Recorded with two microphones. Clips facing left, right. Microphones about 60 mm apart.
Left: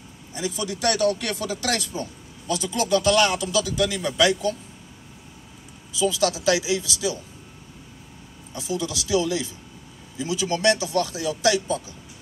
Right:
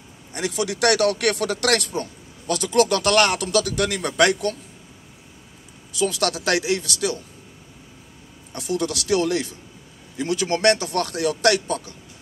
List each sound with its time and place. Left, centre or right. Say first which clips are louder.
0.3 s speech: right 3 dB; right
5.9 s speech: even; right
8.5 s speech: right 3 dB; right